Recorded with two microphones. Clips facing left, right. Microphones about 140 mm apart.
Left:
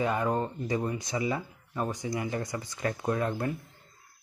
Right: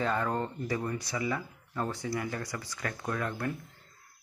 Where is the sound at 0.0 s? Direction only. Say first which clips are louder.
Left 2 dB; 15° left (ahead or behind).